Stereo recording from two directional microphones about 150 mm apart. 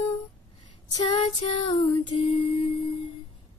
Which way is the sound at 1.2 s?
35° left (ahead or behind).